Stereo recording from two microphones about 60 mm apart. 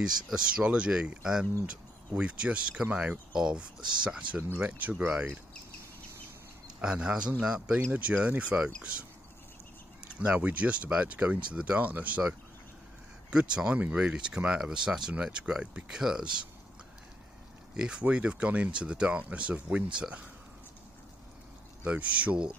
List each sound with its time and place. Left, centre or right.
0.2 s speech: centre
4.6 s speech: right
6.8 s speech: centre
10.1 s speech: right
13.3 s speech: centre
17.7 s speech: centre
21.8 s speech: right